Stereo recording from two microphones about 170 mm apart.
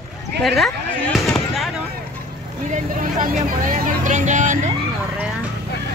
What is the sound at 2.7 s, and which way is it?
Vehicle, 50° right (ahead or behind).